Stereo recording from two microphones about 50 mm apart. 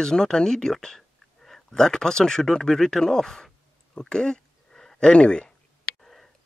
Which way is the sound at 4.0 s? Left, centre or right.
Centre.